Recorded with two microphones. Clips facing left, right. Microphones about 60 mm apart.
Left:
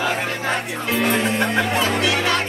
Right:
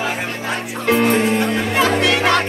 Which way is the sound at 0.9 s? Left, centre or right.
Right.